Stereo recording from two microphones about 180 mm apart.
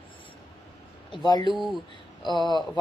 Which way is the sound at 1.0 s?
25° left (ahead or behind).